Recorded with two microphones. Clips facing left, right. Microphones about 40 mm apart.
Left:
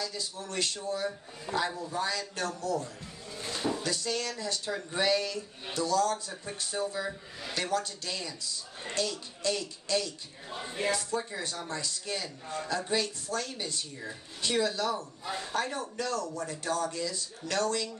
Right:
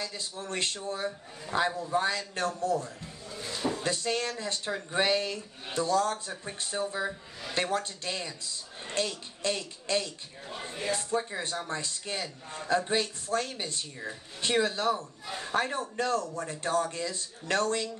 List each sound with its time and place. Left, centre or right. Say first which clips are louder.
0.0 s speech: even; right